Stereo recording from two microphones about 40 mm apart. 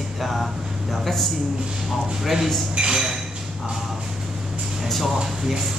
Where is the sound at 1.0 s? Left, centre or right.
Centre.